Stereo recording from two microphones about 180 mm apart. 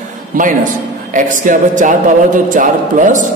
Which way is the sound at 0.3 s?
45° right (ahead or behind).